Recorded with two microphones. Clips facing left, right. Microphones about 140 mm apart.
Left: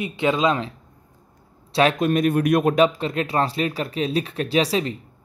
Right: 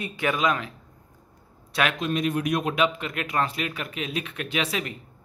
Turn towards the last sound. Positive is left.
turn(degrees=30)  # may be behind; listen again after turning